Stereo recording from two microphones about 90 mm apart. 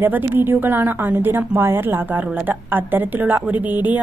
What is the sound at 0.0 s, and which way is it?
A woman's voice, 20° right (ahead or behind).